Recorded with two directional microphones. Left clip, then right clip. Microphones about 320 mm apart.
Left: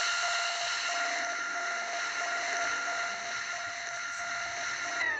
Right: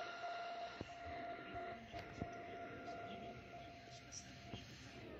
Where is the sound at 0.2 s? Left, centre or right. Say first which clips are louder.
Left 16 dB; left.